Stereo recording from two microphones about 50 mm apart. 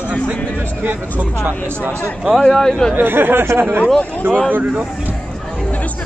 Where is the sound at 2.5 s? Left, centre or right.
Centre.